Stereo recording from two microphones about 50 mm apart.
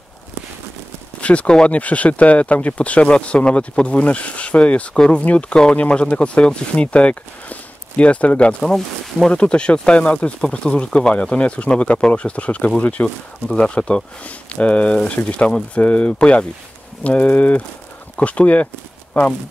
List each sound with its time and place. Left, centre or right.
1.2 s speech: left
4.9 s speech: centre
8.6 s speech: centre
9.3 s speech: left